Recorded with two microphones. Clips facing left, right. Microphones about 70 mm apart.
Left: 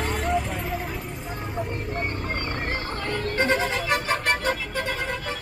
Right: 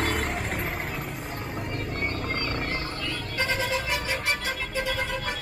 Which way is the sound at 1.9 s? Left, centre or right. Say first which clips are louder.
Left 1 dB; left.